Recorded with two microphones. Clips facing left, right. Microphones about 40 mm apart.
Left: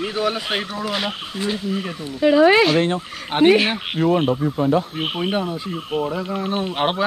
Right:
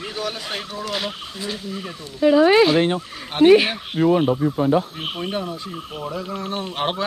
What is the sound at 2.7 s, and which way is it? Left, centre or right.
Speech, centre.